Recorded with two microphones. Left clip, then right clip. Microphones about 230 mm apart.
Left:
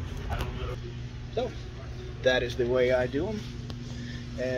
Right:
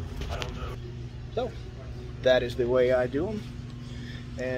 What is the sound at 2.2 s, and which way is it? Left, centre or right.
Speech, centre.